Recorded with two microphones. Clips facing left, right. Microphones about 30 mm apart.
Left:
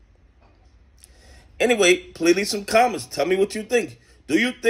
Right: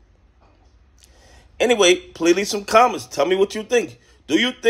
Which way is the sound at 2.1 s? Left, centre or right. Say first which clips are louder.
Right 2 dB; left.